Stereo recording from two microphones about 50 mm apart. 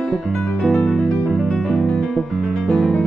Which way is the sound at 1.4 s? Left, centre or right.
Left.